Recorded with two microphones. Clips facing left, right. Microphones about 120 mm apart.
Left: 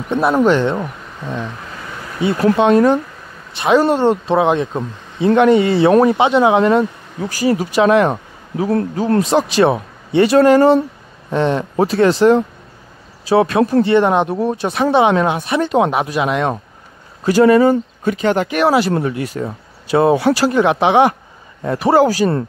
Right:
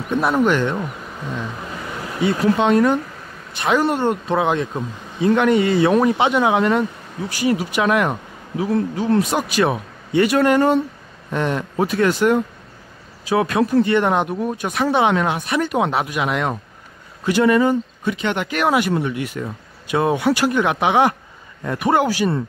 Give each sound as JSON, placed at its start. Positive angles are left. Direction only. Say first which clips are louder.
{"t": 0.1, "sound": "speech", "louder": "left 4 dB", "side_deg": 25}
{"t": 2.5, "sound": "speech", "louder": "left 5 dB", "side_deg": 20}
{"t": 7.2, "sound": "speech", "louder": "left 3 dB", "side_deg": 40}
{"t": 8.5, "sound": "speech", "louder": "left 3 dB", "side_deg": 45}
{"t": 11.7, "sound": "speech", "louder": "left 4 dB", "side_deg": 35}
{"t": 14.3, "sound": "speech", "louder": "left 5 dB", "side_deg": 35}
{"t": 17.2, "sound": "speech", "louder": "left 5 dB", "side_deg": 35}
{"t": 18.5, "sound": "speech", "louder": "left 4 dB", "side_deg": 25}